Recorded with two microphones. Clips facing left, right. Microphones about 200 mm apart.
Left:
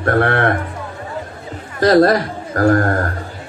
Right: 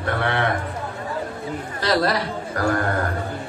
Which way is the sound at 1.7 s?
50° left (ahead or behind).